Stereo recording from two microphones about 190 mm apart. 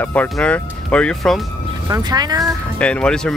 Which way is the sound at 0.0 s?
10° left (ahead or behind).